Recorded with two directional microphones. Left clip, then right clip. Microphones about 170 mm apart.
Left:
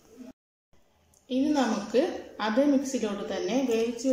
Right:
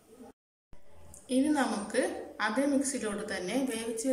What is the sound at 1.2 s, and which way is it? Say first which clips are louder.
A woman's voice: left 2 dB; 15° left (ahead or behind).